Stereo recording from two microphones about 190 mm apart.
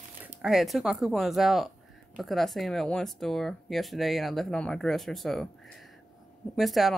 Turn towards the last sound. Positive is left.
turn(degrees=0)  # may be behind; listen again after turning